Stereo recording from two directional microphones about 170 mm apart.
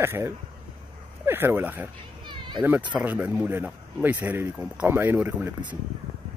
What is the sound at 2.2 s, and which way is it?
Children playing, 25° right (ahead or behind).